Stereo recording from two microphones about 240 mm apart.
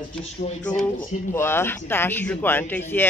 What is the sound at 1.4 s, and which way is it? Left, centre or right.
A woman's voice, centre.